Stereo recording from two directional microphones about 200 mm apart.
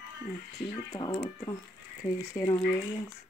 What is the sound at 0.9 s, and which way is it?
Speech, 20° left (ahead or behind).